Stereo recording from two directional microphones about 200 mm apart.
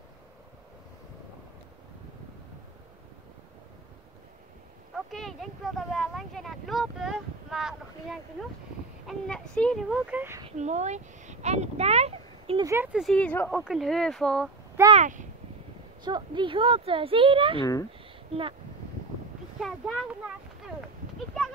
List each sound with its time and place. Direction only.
4.9 s speech: centre (ahead or behind)
10.4 s speech: 35° right (ahead or behind)
12.6 s speech: 10° right (ahead or behind)
15.0 s speech: 40° right (ahead or behind)
16.0 s speech: 20° right (ahead or behind)
19.6 s speech: centre (ahead or behind)